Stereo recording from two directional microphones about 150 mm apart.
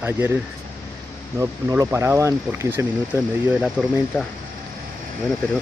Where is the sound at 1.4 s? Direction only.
20° right (ahead or behind).